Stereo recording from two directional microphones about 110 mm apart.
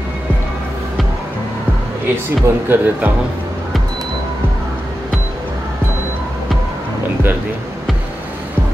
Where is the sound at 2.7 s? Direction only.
15° right (ahead or behind).